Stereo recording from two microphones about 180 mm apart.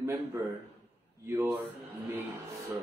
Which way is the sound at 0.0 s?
15° right (ahead or behind).